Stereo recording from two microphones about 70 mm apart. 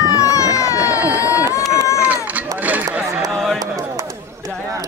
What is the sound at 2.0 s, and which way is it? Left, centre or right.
Run, right.